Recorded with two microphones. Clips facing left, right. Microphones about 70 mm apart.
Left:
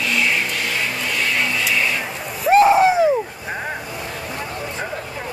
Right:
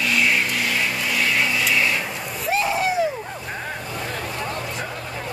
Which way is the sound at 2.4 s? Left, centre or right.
Left.